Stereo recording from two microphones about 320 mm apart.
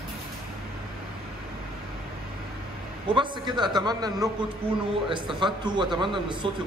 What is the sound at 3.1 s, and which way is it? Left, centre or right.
A man's voice, centre.